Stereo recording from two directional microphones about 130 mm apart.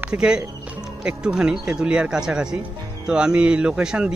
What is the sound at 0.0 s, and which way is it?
Speech, 5° right (ahead or behind).